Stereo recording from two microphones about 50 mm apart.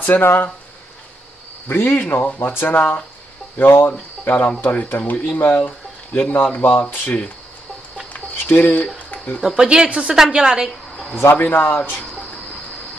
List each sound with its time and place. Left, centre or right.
0.0 s speech: left
1.7 s speech: left
6.3 s speech: left
8.5 s speech: left
8.9 s a sound: left
9.4 s a woman's voice: centre
11.1 s speech: left